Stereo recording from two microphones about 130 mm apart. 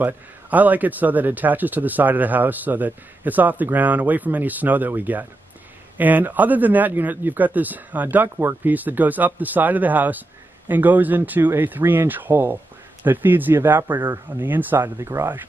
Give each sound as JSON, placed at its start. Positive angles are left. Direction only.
{"t": 0.0, "sound": "speech", "side_deg": -10}